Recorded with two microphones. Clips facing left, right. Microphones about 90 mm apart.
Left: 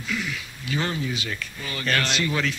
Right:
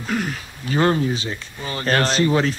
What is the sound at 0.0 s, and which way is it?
Speech, 45° right (ahead or behind).